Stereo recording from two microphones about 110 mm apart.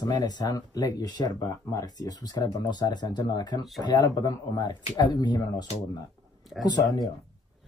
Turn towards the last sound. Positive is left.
turn(degrees=35)  # may be behind; listen again after turning